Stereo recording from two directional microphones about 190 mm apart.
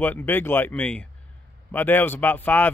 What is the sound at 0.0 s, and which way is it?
Speech, 10° left (ahead or behind).